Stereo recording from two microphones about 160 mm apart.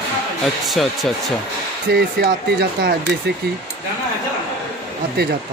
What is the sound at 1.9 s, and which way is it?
Speech, 90° right.